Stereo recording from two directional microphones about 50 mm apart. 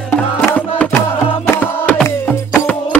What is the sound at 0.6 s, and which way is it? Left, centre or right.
Music, left.